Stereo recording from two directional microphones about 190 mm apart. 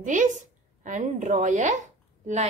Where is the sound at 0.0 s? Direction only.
40° right (ahead or behind).